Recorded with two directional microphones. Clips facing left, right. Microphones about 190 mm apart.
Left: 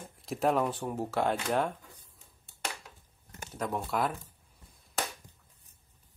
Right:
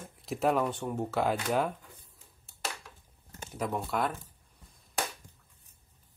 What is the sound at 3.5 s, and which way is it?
Speech, 5° right (ahead or behind).